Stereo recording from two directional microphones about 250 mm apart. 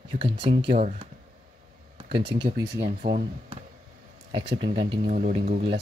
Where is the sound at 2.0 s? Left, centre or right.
Right.